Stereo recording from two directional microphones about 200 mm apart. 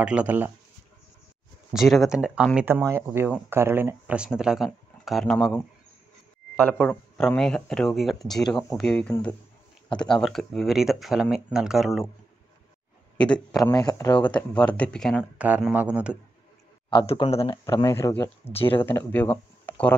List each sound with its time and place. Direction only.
0.0 s speech: 5° right (ahead or behind)
1.7 s speech: centre (ahead or behind)
13.2 s speech: 5° left (ahead or behind)
13.7 s speech: 15° left (ahead or behind); by 16.2 s 5° right (ahead or behind)
16.9 s speech: 25° left (ahead or behind)
17.6 s speech: 15° left (ahead or behind)
18.5 s speech: 30° left (ahead or behind)
18.8 s speech: 10° left (ahead or behind)